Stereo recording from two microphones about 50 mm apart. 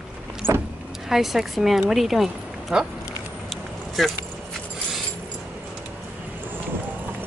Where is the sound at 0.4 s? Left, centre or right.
Right.